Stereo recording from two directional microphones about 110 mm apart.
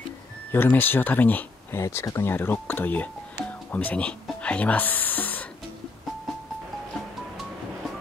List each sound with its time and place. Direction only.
0.5 s speech: 20° left (ahead or behind)